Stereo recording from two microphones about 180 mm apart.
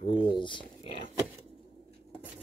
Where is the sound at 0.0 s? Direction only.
25° left (ahead or behind).